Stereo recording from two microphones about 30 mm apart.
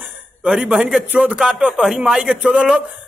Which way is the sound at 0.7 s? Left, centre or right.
Right.